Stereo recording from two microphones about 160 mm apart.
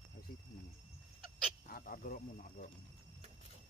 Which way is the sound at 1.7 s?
65° left (ahead or behind).